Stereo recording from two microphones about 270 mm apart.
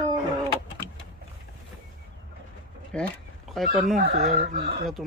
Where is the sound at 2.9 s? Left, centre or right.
Centre.